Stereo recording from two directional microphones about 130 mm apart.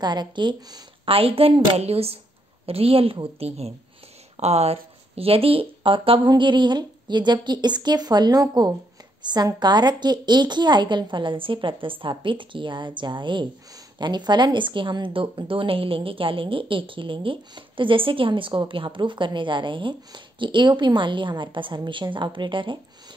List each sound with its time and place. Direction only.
0.0 s a woman's voice: 35° right (ahead or behind)
1.1 s a woman's voice: 45° right (ahead or behind)